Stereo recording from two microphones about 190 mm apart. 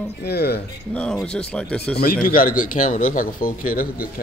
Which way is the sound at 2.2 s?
45° left (ahead or behind).